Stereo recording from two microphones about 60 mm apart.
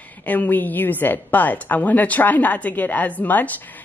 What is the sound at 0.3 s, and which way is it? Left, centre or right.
A woman's voice, left.